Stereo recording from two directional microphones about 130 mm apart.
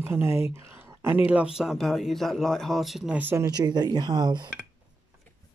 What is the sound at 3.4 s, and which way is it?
Speech, 30° right (ahead or behind).